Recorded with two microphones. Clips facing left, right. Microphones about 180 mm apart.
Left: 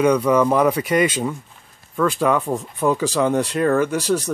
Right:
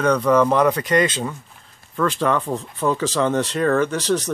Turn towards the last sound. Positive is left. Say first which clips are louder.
# left 1 dB
turn(degrees=10)  # may be behind; listen again after turning